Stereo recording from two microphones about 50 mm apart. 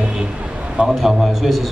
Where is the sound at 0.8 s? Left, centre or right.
Centre.